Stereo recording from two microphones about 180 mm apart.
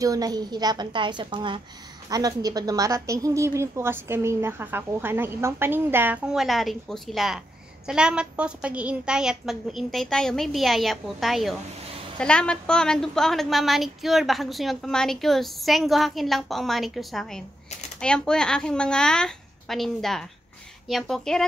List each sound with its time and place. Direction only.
0.0 s a woman's voice: 20° right (ahead or behind); by 21.5 s 5° left (ahead or behind)